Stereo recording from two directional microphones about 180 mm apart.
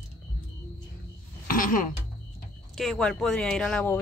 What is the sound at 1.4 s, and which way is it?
Music, 50° left (ahead or behind).